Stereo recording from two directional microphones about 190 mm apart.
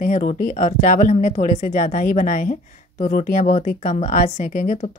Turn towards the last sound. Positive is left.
turn(degrees=40)  # may be behind; listen again after turning